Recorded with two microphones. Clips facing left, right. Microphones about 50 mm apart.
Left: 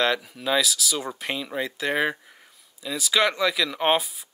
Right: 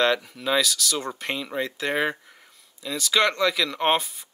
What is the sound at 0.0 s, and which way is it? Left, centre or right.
Speech, centre.